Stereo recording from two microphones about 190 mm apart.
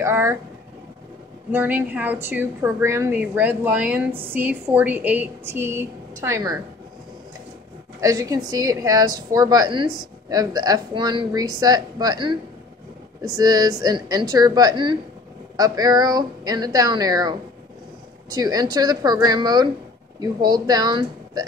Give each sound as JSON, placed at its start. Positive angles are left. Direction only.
{"t": 0.0, "sound": "a woman's voice", "side_deg": -15}
{"t": 1.5, "sound": "a woman's voice", "side_deg": -10}
{"t": 8.0, "sound": "a woman's voice", "side_deg": -20}